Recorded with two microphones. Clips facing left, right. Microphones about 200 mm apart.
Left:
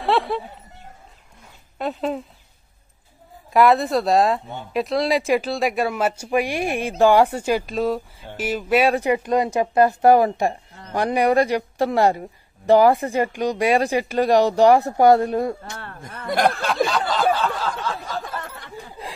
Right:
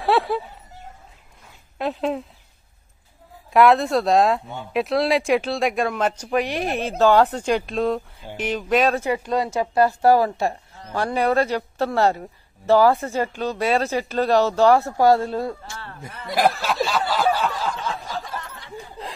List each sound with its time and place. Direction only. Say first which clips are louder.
0.0 s speech: right 1 dB; centre (ahead or behind)
1.8 s speech: right 1 dB; centre (ahead or behind)
3.5 s speech: even; centre (ahead or behind); by 15.8 s 20° left (ahead or behind)
16.1 s speech: left 6 dB; 55° left (ahead or behind)
16.3 s speech: even; centre (ahead or behind)
17.1 s snicker: left 1 dB; 10° right (ahead or behind)
17.5 s a sound: left 1 dB; 60° left (ahead or behind)